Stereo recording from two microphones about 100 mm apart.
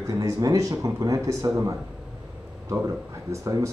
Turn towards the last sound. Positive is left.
turn(degrees=-30)  # may be behind; listen again after turning